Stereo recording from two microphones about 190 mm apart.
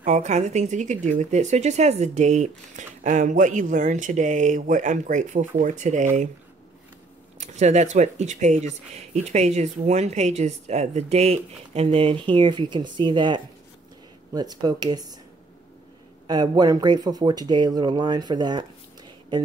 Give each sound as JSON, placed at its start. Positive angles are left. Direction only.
{"t": 0.0, "sound": "speech", "side_deg": -40}
{"t": 7.3, "sound": "speech", "side_deg": -35}
{"t": 16.3, "sound": "speech", "side_deg": -20}